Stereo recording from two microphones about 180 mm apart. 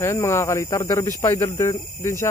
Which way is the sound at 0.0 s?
15° left (ahead or behind).